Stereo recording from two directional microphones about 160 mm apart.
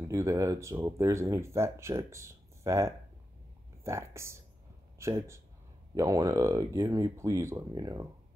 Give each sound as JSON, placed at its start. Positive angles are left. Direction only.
{"t": 0.1, "sound": "speech", "side_deg": -20}